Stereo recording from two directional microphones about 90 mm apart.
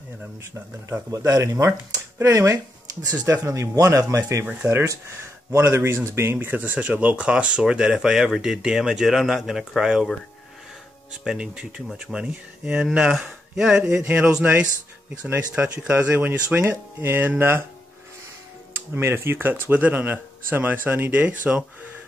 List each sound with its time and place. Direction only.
0.4 s speech: 30° right (ahead or behind)
1.7 s speech: 20° right (ahead or behind)
2.3 s speech: 35° right (ahead or behind); by 10.0 s 5° right (ahead or behind)
11.2 s speech: 5° right (ahead or behind); by 17.6 s 25° right (ahead or behind)
18.9 s speech: 25° right (ahead or behind)